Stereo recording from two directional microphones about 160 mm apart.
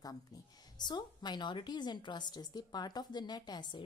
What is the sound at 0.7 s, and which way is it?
A woman's voice, 25° left (ahead or behind).